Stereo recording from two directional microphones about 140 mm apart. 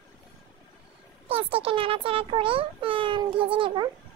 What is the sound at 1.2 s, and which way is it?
A child's voice, 45° right (ahead or behind).